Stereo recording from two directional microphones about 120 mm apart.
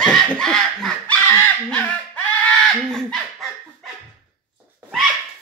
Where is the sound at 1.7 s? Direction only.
10° left (ahead or behind).